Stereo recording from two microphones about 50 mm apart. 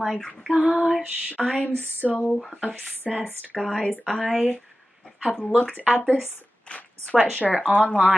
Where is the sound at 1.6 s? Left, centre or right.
Left.